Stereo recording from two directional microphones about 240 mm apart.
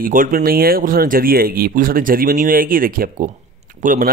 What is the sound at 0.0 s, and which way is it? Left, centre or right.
Speech, right.